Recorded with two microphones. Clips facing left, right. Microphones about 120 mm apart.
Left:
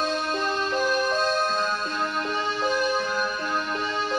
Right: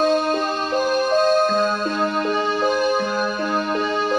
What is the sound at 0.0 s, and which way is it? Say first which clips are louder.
Music: right 8 dB; 50° right (ahead or behind).